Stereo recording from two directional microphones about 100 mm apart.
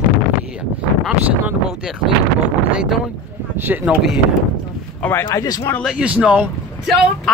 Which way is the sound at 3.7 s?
20° right (ahead or behind).